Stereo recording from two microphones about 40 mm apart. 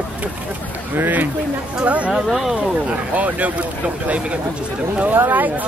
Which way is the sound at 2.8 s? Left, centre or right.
Right.